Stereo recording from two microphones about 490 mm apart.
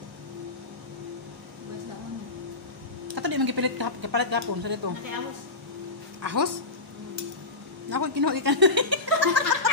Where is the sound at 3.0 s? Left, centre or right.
Right.